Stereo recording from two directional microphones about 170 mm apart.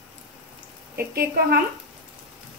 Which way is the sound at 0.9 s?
65° right (ahead or behind).